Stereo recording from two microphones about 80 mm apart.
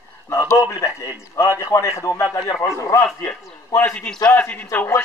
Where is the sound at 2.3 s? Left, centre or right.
Left.